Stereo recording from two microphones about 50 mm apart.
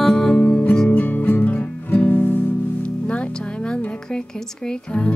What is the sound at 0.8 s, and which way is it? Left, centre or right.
Music, left.